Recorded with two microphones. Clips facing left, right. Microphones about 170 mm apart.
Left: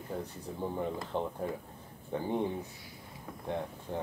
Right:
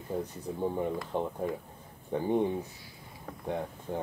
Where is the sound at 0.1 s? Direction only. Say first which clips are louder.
Right 5 dB; 15° right (ahead or behind).